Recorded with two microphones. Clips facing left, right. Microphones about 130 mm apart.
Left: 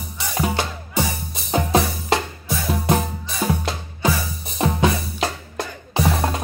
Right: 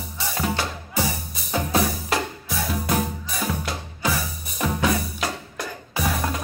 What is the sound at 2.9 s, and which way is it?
Music, 25° left (ahead or behind).